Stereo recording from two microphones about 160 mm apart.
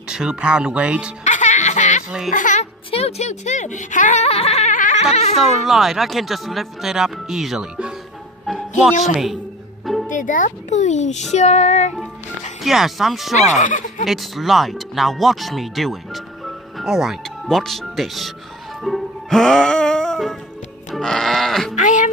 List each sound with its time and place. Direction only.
0.1 s speech: 5° right (ahead or behind)
1.2 s baby laughter: 50° left (ahead or behind)
2.0 s speech: 5° right (ahead or behind)
2.3 s speech: 50° left (ahead or behind)
5.4 s speech: centre (ahead or behind)
8.5 s music: centre (ahead or behind)
9.0 s speech: centre (ahead or behind)
10.0 s a child's voice: 55° left (ahead or behind)
12.6 s speech: centre (ahead or behind)
13.4 s speech: 50° left (ahead or behind)
14.0 s speech: centre (ahead or behind)
18.8 s music: centre (ahead or behind)
20.9 s sheep: 5° left (ahead or behind)
21.7 s a sound: 50° left (ahead or behind)